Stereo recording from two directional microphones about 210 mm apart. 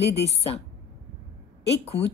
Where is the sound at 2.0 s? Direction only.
55° left (ahead or behind).